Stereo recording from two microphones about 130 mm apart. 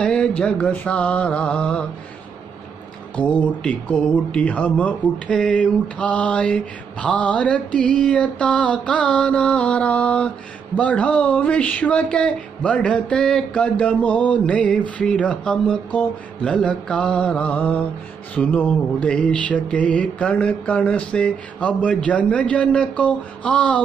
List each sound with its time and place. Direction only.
0.0 s speech: 5° left (ahead or behind)
3.2 s speech: 10° left (ahead or behind)